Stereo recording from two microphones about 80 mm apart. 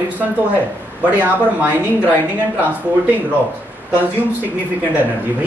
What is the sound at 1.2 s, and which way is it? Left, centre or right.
Speech, right.